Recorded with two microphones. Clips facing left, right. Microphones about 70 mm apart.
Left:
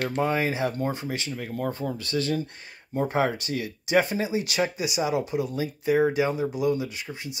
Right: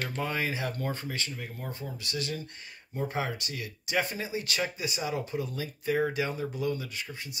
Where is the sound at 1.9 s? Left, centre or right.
Left.